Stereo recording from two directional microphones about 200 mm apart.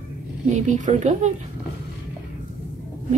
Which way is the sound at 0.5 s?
40° right (ahead or behind).